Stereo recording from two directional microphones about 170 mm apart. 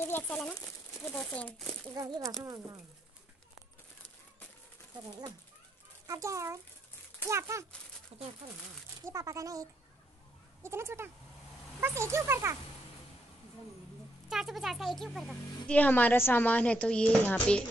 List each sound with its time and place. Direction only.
0.0 s speech: 10° left (ahead or behind)
2.0 s speech: 20° right (ahead or behind)
6.0 s speech: 20° right (ahead or behind)
9.0 s speech: 20° right (ahead or behind)
14.3 s speech: centre (ahead or behind)